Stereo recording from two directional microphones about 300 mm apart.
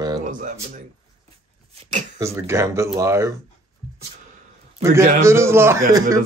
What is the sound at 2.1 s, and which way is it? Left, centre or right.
Speech, centre.